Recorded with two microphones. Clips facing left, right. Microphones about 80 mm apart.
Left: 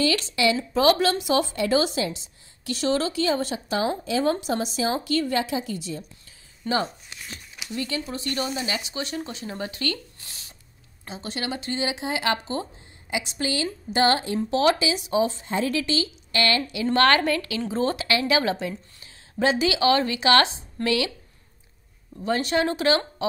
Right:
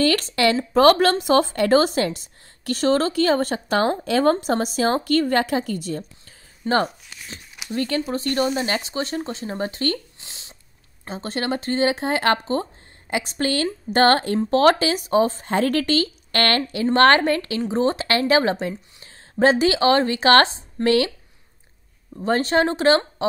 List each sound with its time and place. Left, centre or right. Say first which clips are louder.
0.0 s a woman's voice: right 4 dB; right
6.6 s speech: right 5 dB; right
7.7 s speech: right 6 dB; right
10.2 s a sound: right 1 dB; right
11.1 s a woman's voice: right 6 dB; right
15.5 s a woman's voice: right 7 dB; right
16.8 s speech: right 4 dB; right
18.0 s a woman's voice: right 4 dB; right
22.2 s speech: right 4 dB; right